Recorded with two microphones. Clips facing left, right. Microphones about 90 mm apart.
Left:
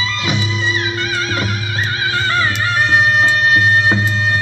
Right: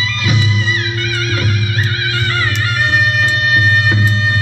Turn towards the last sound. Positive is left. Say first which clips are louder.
# left 1 dB
turn(degrees=30)  # may be behind; listen again after turning